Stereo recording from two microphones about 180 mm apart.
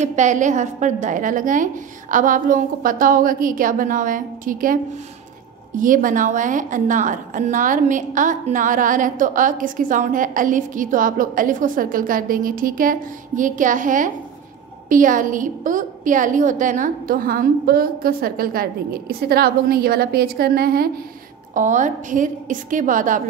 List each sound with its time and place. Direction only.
0.1 s a woman's voice: 45° right (ahead or behind)
5.8 s a woman's voice: 50° right (ahead or behind)
21.5 s a woman's voice: 45° right (ahead or behind)